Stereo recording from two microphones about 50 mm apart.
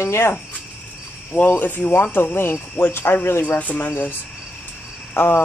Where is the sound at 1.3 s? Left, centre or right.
Left.